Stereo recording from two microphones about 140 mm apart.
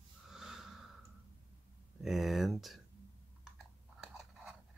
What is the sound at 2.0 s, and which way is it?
Speech, centre (ahead or behind).